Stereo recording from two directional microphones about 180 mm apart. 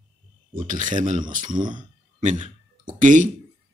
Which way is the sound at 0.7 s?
45° right (ahead or behind).